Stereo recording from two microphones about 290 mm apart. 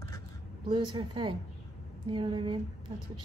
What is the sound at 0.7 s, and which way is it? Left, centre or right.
Speech, centre.